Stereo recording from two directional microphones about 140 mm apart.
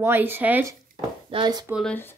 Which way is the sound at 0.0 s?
15° right (ahead or behind).